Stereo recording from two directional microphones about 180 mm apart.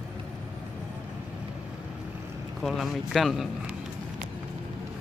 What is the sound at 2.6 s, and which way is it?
Speech, centre (ahead or behind).